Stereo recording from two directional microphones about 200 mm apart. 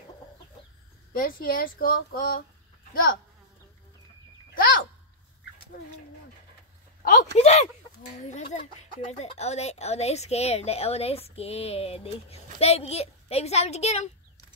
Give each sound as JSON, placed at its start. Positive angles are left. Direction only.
{"t": 1.1, "sound": "a woman's voice", "side_deg": 45}
{"t": 7.3, "sound": "speech", "side_deg": 35}